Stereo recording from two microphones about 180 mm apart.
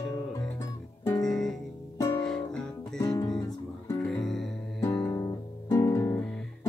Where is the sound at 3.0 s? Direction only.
20° left (ahead or behind).